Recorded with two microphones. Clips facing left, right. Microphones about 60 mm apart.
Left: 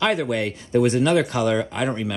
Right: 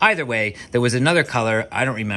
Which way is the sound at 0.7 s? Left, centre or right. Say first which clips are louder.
Even; right.